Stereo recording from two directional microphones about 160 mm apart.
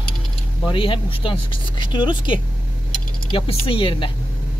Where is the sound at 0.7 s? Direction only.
30° left (ahead or behind).